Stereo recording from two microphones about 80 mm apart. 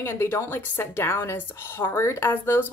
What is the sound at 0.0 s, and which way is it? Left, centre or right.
Speech, left.